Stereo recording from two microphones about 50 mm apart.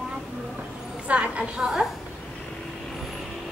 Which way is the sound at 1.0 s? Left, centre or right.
Right.